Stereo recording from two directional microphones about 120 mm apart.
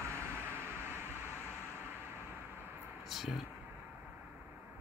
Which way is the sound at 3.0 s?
Centre (ahead or behind).